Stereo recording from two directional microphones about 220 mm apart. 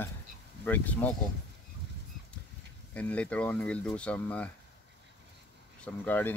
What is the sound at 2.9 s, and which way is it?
Speech, 5° left (ahead or behind).